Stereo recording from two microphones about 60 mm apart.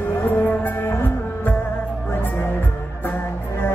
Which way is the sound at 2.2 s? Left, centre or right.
Left.